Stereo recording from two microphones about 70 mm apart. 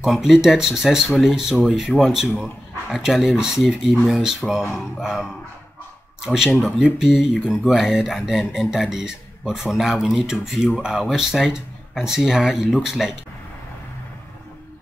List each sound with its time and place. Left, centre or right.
0.0 s speech: centre